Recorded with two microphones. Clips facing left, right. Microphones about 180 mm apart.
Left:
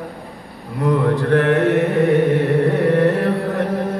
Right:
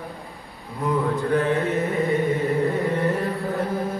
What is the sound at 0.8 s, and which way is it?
Mantra, 75° left (ahead or behind).